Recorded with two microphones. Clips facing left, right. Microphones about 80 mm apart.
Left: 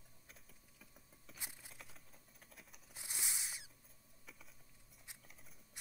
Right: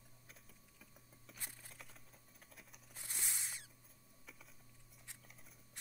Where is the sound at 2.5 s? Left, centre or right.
Centre.